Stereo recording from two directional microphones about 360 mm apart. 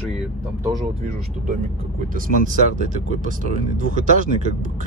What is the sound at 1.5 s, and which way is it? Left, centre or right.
Speech, right.